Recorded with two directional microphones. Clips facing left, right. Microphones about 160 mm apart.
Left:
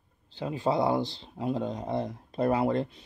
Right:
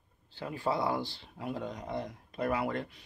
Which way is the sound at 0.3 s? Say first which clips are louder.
Left 5 dB; 20° left (ahead or behind).